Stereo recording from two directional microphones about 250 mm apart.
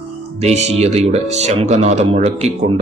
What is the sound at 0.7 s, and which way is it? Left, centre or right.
Speech, right.